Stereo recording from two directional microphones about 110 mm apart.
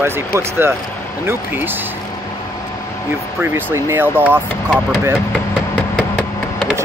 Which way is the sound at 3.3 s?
20° right (ahead or behind).